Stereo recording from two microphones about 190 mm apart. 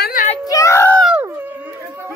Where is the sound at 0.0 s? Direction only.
45° left (ahead or behind).